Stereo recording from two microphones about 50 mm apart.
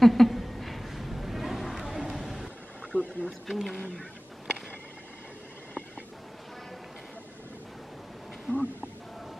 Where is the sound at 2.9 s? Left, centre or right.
Left.